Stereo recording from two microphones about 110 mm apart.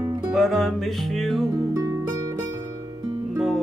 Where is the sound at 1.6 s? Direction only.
25° right (ahead or behind).